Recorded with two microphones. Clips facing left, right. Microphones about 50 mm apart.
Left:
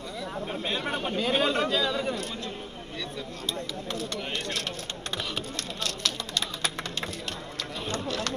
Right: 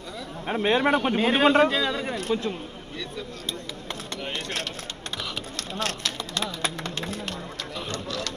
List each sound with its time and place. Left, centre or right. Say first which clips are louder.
0.5 s a man's voice: right 12 dB; right
5.8 s vehicle: right 4 dB; right
7.9 s a sound: left 2 dB; left